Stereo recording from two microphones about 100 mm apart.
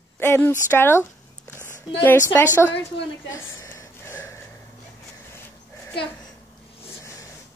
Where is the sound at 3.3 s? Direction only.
30° left (ahead or behind).